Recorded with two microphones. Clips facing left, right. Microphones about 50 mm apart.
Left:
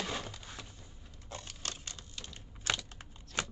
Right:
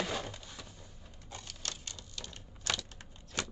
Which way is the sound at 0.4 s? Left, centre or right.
Left.